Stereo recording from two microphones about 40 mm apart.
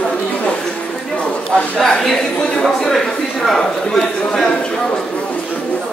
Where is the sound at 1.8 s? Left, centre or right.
Centre.